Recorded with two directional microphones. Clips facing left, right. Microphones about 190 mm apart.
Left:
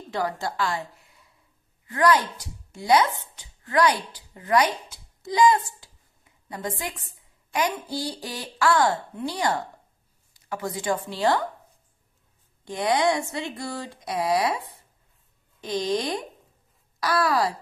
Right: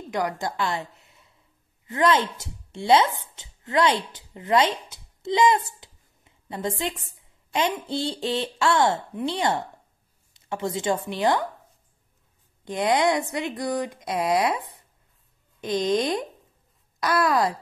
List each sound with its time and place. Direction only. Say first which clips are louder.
0.1 s a woman's voice: right 1 dB; 15° right (ahead or behind)
12.6 s speech: right 1 dB; 20° right (ahead or behind)